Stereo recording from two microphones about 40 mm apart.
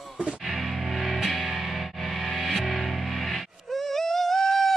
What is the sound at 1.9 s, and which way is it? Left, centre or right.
Music, centre.